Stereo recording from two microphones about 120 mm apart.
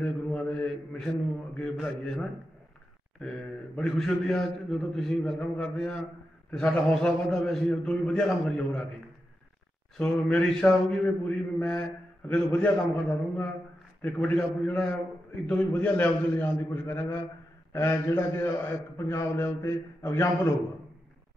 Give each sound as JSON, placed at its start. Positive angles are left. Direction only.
{"t": 0.0, "sound": "a man's voice", "side_deg": 10}
{"t": 3.2, "sound": "a man's voice", "side_deg": 5}
{"t": 9.9, "sound": "a man's voice", "side_deg": 5}